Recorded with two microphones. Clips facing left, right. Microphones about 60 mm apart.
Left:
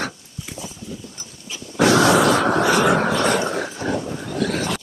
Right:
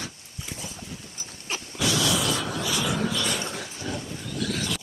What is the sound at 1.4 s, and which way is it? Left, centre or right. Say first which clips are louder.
Dog: right 2 dB; right.